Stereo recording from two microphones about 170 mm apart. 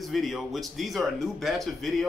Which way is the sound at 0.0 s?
Centre (ahead or behind).